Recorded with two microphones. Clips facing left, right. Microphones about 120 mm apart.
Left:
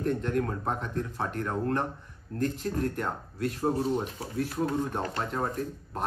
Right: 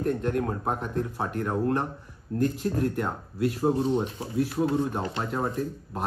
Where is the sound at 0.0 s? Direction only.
45° right (ahead or behind).